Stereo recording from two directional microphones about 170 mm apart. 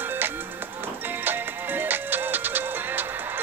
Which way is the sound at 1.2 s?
10° right (ahead or behind).